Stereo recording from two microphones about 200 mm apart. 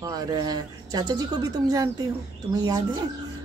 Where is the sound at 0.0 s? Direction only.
20° right (ahead or behind).